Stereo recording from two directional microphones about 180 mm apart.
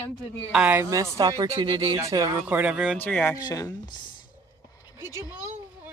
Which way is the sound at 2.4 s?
10° right (ahead or behind).